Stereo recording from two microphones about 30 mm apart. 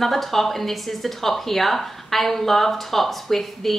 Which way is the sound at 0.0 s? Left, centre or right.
Centre.